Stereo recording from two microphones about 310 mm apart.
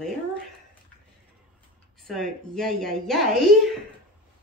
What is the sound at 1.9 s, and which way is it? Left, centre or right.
A woman's voice, centre.